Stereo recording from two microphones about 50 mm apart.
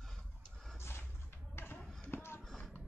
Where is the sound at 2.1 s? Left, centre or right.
Left.